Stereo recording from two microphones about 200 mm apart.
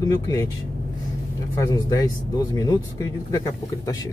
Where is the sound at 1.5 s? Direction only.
15° left (ahead or behind).